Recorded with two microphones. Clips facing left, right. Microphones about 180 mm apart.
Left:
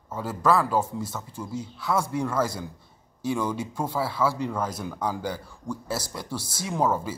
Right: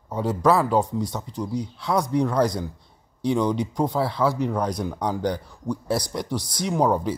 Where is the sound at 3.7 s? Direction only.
15° right (ahead or behind).